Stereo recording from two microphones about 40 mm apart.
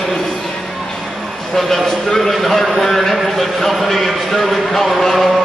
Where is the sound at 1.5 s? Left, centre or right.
Centre.